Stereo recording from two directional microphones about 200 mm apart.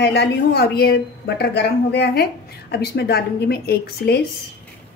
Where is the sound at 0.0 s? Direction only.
60° left (ahead or behind).